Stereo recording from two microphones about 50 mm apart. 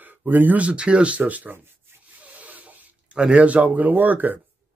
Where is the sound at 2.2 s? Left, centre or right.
Right.